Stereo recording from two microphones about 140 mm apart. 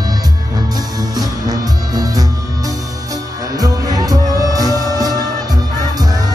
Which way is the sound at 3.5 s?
25° right (ahead or behind).